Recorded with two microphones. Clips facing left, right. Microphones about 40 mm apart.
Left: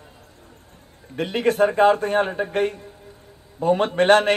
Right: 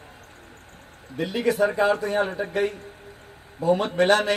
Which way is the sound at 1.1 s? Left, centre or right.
Left.